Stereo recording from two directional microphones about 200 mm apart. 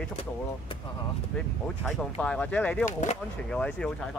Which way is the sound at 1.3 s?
5° left (ahead or behind).